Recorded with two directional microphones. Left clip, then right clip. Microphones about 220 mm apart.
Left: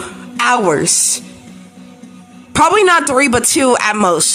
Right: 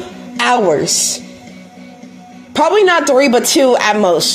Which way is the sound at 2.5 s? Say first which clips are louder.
Left 1 dB; 20° left (ahead or behind).